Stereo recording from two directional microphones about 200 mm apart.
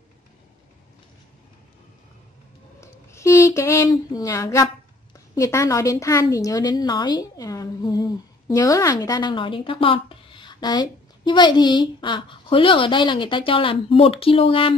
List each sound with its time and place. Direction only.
2.8 s a woman's voice: 15° left (ahead or behind)